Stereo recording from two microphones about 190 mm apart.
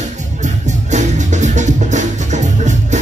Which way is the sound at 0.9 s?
40° right (ahead or behind).